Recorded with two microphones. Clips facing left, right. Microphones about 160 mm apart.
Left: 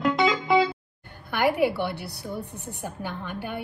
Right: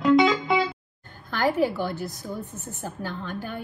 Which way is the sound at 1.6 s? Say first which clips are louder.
Left 1 dB; 40° right (ahead or behind).